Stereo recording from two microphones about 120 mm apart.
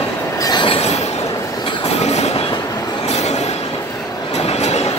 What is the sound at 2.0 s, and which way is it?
Train, 65° left (ahead or behind).